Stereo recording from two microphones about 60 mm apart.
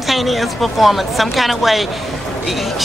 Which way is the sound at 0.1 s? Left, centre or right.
Centre.